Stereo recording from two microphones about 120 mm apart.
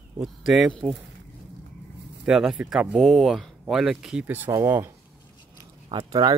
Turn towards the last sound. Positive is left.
turn(degrees=-35)  # may be behind; listen again after turning